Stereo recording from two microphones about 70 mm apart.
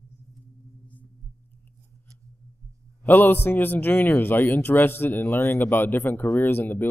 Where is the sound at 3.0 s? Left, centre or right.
Left.